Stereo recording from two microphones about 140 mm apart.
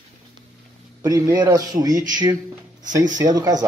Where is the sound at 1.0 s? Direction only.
25° right (ahead or behind).